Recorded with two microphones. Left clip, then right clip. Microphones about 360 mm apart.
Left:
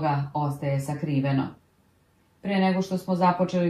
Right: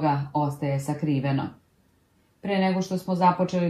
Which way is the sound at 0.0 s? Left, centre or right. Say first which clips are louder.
Right 2 dB; centre.